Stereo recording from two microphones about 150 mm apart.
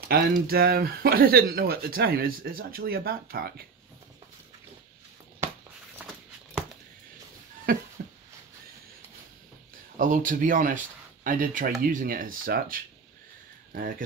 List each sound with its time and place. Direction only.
0.1 s speech: 85° right
7.7 s a sound: 80° right
9.9 s speech: 60° right (ahead or behind)